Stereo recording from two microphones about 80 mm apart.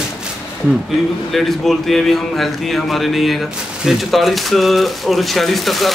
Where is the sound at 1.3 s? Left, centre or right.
Centre.